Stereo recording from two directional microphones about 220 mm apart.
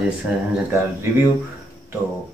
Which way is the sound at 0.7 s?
10° right (ahead or behind).